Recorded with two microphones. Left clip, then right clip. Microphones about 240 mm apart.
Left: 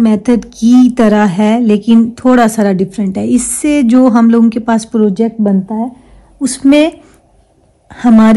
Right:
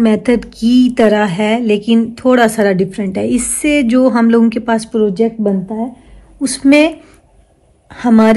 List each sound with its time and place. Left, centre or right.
0.0 s speech: left
4.9 s speech: left
7.9 s speech: left